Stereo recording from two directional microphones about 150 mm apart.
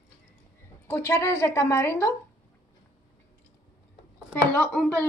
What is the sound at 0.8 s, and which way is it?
A woman's voice, 15° left (ahead or behind).